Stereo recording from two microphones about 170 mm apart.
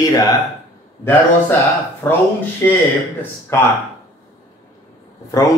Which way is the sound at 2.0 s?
10° left (ahead or behind).